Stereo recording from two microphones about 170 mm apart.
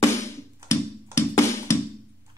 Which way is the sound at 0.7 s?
15° left (ahead or behind).